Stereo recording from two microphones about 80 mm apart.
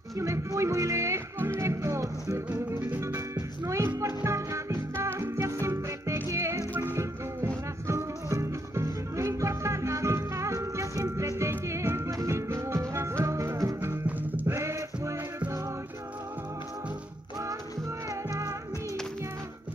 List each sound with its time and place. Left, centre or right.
0.2 s music: right